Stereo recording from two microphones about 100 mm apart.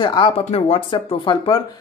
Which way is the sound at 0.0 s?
50° left (ahead or behind).